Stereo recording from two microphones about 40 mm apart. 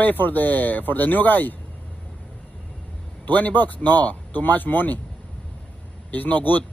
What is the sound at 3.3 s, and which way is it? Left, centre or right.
Speech, left.